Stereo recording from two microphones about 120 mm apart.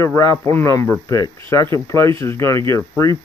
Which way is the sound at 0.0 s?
20° left (ahead or behind).